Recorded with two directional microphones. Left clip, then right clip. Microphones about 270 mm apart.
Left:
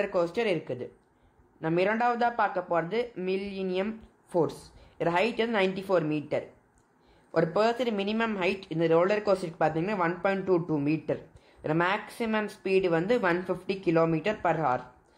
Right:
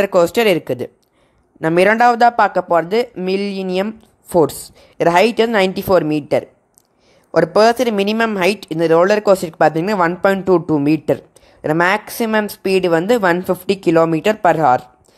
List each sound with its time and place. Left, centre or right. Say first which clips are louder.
0.0 s speech: right 14 dB; right